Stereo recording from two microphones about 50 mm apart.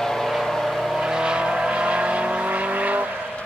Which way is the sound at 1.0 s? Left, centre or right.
Centre.